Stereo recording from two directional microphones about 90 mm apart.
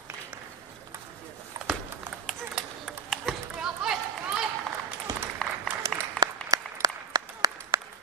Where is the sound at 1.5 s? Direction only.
35° right (ahead or behind).